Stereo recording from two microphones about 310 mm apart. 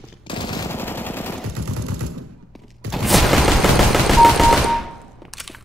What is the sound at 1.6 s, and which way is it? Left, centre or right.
Gunshot, right.